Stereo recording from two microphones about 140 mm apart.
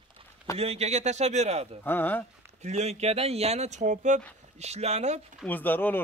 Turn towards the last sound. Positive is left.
turn(degrees=15)  # may be behind; listen again after turning